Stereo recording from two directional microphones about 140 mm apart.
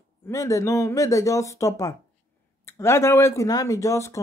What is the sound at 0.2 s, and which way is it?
Speech, 25° left (ahead or behind).